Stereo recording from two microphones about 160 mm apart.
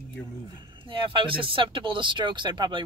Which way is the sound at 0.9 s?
30° right (ahead or behind).